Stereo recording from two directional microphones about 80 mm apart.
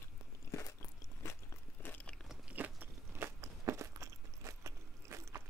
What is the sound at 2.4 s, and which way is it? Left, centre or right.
Crunch, right.